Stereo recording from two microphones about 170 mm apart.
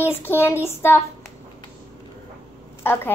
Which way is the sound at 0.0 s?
15° left (ahead or behind).